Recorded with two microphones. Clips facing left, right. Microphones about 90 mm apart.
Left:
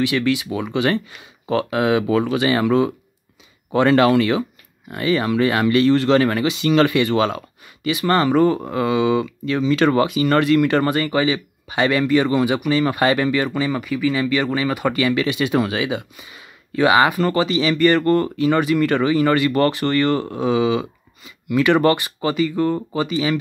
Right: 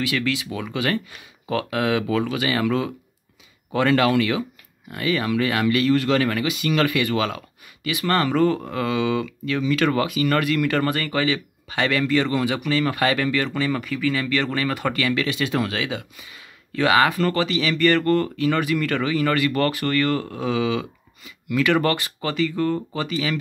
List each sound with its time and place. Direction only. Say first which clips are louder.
0.0 s speech: left 5 dB; 20° left (ahead or behind)